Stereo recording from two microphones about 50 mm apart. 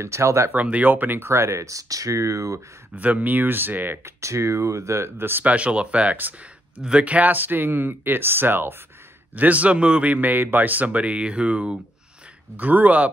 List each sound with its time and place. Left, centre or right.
0.0 s speech: right
0.5 s speech: right
1.2 s speech: right
3.0 s speech: right
4.0 s speech: right
5.4 s speech: right
9.3 s speech: right
12.5 s speech: right